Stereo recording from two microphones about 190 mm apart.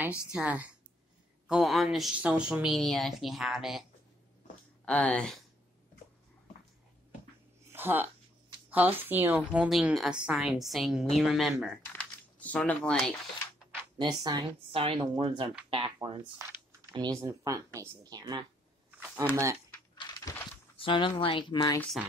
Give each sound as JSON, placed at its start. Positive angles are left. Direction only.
{"t": 0.3, "sound": "a woman's voice", "side_deg": -5}
{"t": 4.8, "sound": "speech", "side_deg": 5}
{"t": 7.6, "sound": "a sound", "side_deg": -10}
{"t": 8.6, "sound": "a woman's voice", "side_deg": -10}
{"t": 13.9, "sound": "speech", "side_deg": -20}
{"t": 18.9, "sound": "speech", "side_deg": -10}
{"t": 20.7, "sound": "a sound", "side_deg": 25}
{"t": 21.2, "sound": "speech", "side_deg": 25}
{"t": 21.7, "sound": "a woman's voice", "side_deg": 5}